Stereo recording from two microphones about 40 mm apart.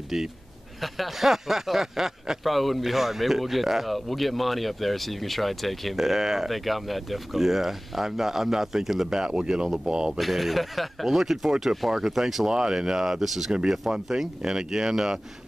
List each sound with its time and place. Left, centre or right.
0.1 s speech: centre
5.9 s speech: centre
9.2 s speech: centre
10.1 s speech: centre